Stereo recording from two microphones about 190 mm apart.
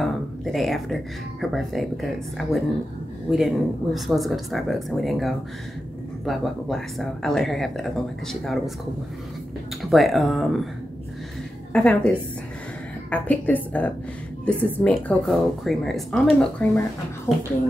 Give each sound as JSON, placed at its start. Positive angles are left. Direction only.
{"t": 0.0, "sound": "speech", "side_deg": 0}
{"t": 9.8, "sound": "speech", "side_deg": 0}
{"t": 11.7, "sound": "a woman's voice", "side_deg": 5}